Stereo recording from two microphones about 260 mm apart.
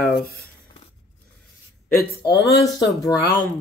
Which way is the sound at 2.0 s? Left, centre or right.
Left.